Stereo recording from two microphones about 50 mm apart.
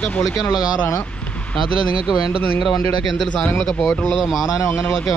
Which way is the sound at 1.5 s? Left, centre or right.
Centre.